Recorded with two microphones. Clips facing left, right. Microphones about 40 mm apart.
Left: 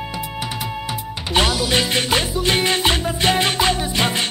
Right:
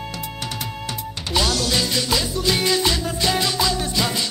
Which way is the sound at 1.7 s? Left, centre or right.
Left.